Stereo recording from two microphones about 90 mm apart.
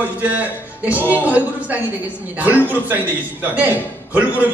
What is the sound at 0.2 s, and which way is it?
A man's voice, 15° right (ahead or behind).